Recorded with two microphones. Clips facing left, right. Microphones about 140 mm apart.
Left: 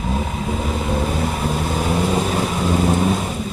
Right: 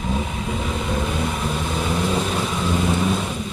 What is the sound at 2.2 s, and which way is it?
Vehicle, 10° left (ahead or behind).